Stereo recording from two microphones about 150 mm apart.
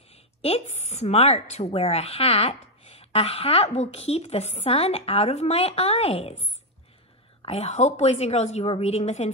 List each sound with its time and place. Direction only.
0.1 s a woman's voice: 45° left (ahead or behind)